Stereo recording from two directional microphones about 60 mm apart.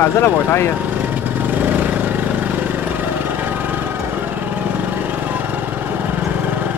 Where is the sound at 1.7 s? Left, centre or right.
Right.